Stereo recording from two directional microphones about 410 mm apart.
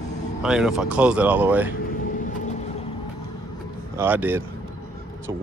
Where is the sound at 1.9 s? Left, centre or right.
Centre.